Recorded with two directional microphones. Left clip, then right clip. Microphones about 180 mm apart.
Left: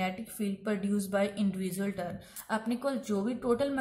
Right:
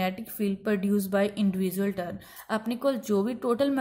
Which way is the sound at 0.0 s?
35° right (ahead or behind).